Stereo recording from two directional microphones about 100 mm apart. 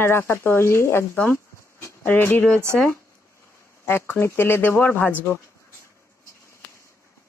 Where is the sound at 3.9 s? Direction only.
20° left (ahead or behind).